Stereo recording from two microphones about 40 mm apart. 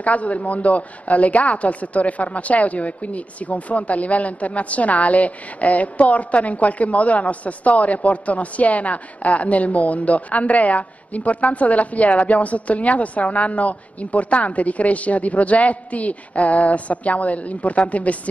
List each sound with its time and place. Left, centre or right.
0.0 s a woman's voice: left